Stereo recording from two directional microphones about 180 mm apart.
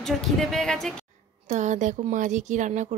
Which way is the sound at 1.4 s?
40° right (ahead or behind).